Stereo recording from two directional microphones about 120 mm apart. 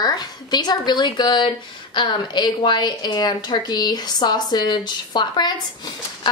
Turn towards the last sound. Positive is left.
turn(degrees=35)  # may be behind; listen again after turning